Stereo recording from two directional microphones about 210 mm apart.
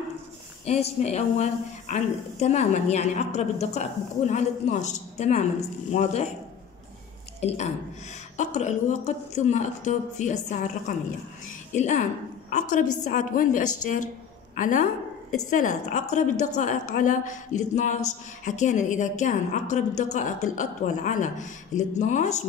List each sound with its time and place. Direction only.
0.7 s a woman's voice: 30° left (ahead or behind)
7.3 s a woman's voice: 30° left (ahead or behind)